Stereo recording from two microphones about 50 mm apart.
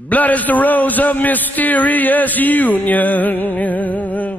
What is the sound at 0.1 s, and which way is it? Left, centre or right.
A man's voice, left.